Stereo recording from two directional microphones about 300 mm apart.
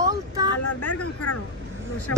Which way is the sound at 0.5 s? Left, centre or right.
Left.